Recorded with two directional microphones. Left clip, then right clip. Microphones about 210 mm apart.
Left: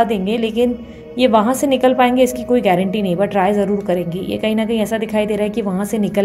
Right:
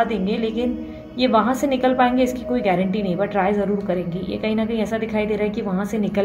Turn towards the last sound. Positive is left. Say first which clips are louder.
# left 4 dB
turn(degrees=25)  # may be behind; listen again after turning